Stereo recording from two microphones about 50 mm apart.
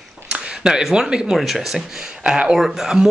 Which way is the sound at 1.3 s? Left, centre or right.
Centre.